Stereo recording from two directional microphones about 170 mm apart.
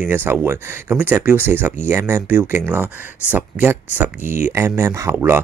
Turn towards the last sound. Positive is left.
turn(degrees=-15)  # may be behind; listen again after turning